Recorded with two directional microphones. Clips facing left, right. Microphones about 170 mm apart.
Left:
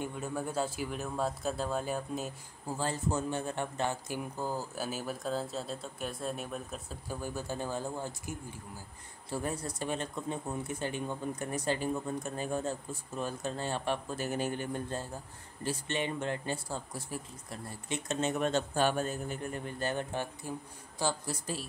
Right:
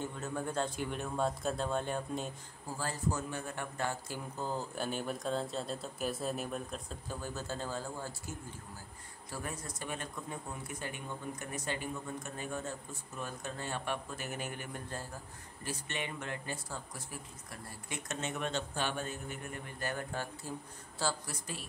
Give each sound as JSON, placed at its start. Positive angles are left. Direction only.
{"t": 0.0, "sound": "speech", "side_deg": 10}
{"t": 2.8, "sound": "a man's voice", "side_deg": 25}
{"t": 4.4, "sound": "speech", "side_deg": 5}
{"t": 9.3, "sound": "a man's voice", "side_deg": 30}
{"t": 21.3, "sound": "speech", "side_deg": 35}